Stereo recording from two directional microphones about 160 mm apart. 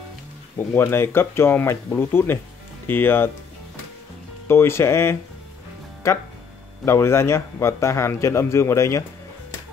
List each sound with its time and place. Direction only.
0.7 s speech: 15° left (ahead or behind)
4.5 s speech: 15° left (ahead or behind)